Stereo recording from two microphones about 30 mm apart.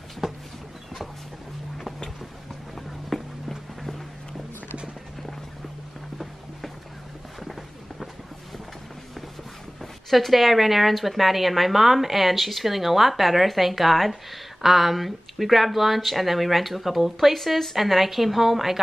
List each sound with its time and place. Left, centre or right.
0.2 s a sound: centre
3.1 s music: centre
9.8 s a woman's voice: centre
17.4 s a woman's voice: centre